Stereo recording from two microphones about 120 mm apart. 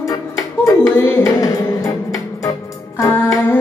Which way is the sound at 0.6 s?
25° left (ahead or behind).